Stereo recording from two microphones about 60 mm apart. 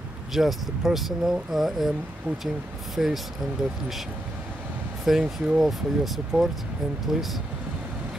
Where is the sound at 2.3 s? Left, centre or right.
Right.